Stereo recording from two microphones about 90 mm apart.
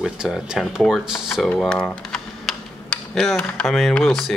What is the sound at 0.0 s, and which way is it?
Speech, 10° right (ahead or behind).